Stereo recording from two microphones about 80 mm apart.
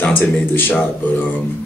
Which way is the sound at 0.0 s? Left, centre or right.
Left.